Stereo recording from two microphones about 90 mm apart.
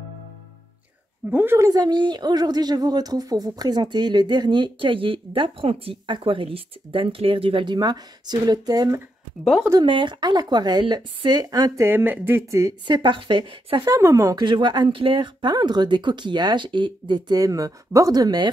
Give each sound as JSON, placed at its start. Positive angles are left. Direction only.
{"t": 1.3, "sound": "speech", "side_deg": -25}
{"t": 1.6, "sound": "speech", "side_deg": -45}
{"t": 9.4, "sound": "speech", "side_deg": 0}
{"t": 9.8, "sound": "speech", "side_deg": -65}
{"t": 11.4, "sound": "speech", "side_deg": -40}
{"t": 11.8, "sound": "speech", "side_deg": -20}
{"t": 12.4, "sound": "speech", "side_deg": -35}
{"t": 12.8, "sound": "speech", "side_deg": -60}
{"t": 13.8, "sound": "speech", "side_deg": -35}
{"t": 14.4, "sound": "speech", "side_deg": -55}
{"t": 17.4, "sound": "speech", "side_deg": -40}